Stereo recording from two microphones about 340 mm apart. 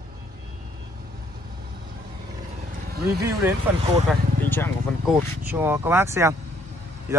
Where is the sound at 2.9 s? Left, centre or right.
Right.